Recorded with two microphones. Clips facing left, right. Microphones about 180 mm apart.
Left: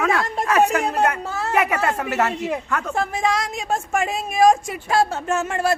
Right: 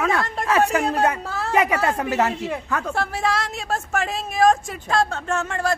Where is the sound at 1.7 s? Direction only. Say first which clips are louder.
Right 1 dB; 15° right (ahead or behind).